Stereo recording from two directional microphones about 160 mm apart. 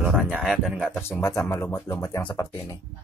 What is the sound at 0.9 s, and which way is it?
Speech, 10° left (ahead or behind).